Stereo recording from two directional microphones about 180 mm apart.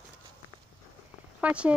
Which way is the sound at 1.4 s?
5° right (ahead or behind).